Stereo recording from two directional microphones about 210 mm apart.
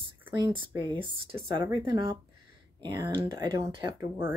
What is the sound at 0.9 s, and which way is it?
A woman's voice, 25° right (ahead or behind).